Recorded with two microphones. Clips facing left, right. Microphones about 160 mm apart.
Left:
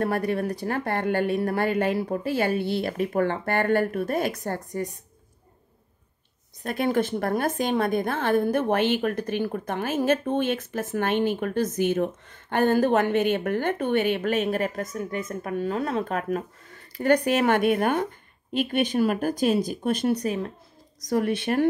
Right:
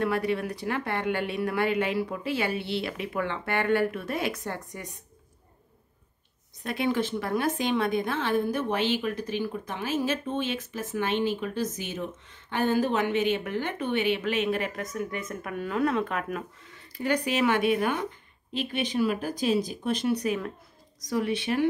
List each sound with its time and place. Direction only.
0.0 s speech: 45° left (ahead or behind)
6.6 s speech: 45° left (ahead or behind)
21.1 s speech: 50° left (ahead or behind)